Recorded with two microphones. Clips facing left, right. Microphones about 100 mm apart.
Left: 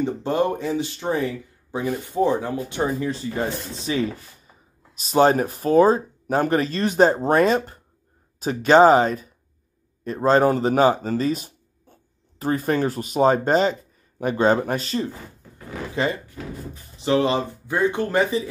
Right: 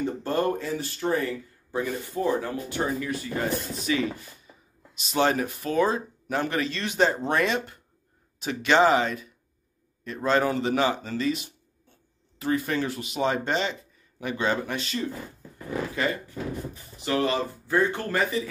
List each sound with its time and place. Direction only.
0.0 s speech: 20° left (ahead or behind); by 15.0 s 40° left (ahead or behind)
15.9 s speech: 25° left (ahead or behind)